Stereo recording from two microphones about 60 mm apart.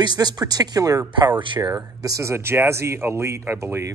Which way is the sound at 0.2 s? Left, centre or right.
Right.